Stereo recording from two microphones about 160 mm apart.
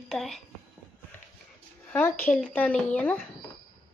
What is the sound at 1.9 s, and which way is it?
Speech, 15° left (ahead or behind).